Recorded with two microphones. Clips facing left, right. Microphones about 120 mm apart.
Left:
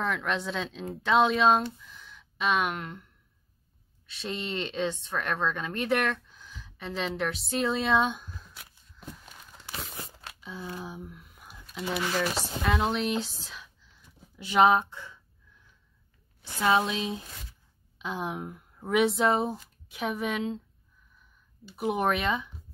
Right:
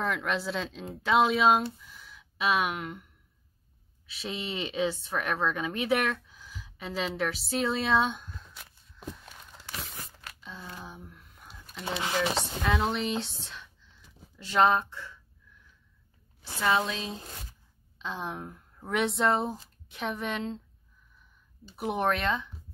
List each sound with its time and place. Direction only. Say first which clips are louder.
0.0 s speech: even; centre (ahead or behind)
4.1 s speech: left 1 dB; 5° right (ahead or behind)
10.4 s a sound: left 5 dB; 10° left (ahead or behind)
11.8 s speech: left 2 dB; 25° right (ahead or behind)
12.6 s speech: left 2 dB; centre (ahead or behind)
14.4 s speech: left 2 dB; 15° left (ahead or behind)
16.6 s speech: left 3 dB; 15° left (ahead or behind)
21.7 s speech: left 1 dB; centre (ahead or behind)